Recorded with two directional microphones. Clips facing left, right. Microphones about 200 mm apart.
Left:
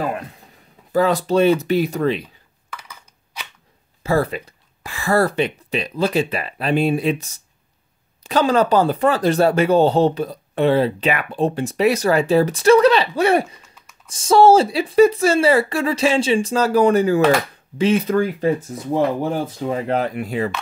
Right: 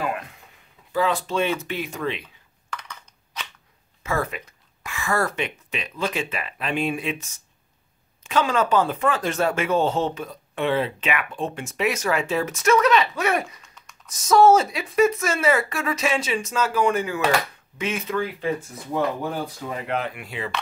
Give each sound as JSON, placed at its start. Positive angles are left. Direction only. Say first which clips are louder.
{"t": 0.0, "sound": "speech", "louder": "left 4 dB", "side_deg": 35}
{"t": 2.7, "sound": "crushing", "louder": "right 1 dB", "side_deg": 10}
{"t": 4.0, "sound": "speech", "louder": "left 7 dB", "side_deg": 35}
{"t": 18.9, "sound": "speech", "louder": "left 5 dB", "side_deg": 25}